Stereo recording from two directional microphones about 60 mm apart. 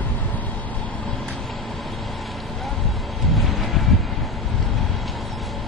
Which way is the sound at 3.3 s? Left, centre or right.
Centre.